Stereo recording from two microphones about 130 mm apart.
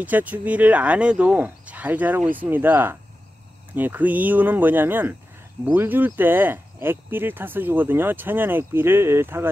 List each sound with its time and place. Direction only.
0.0 s speech: 15° right (ahead or behind)